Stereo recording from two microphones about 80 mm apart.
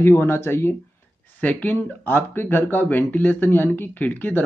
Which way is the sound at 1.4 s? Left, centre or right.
Centre.